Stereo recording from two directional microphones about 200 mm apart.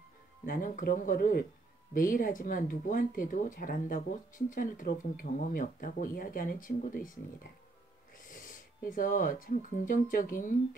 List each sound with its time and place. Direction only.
0.5 s speech: 45° left (ahead or behind)
8.3 s speech: 40° left (ahead or behind)